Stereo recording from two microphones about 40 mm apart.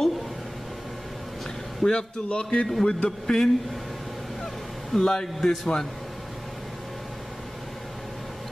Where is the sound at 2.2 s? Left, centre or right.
Left.